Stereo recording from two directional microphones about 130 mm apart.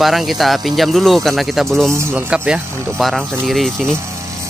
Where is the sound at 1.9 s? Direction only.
20° right (ahead or behind).